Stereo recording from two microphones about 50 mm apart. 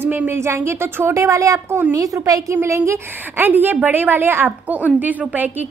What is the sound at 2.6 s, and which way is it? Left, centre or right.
Speech, right.